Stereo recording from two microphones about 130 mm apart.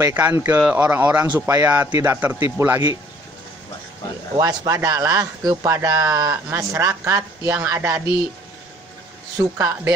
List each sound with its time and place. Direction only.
0.0 s speech: 15° right (ahead or behind)
4.4 s speech: 30° right (ahead or behind)
9.4 s speech: 25° right (ahead or behind)